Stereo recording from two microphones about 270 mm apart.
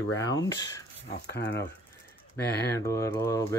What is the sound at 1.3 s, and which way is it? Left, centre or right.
Speech, left.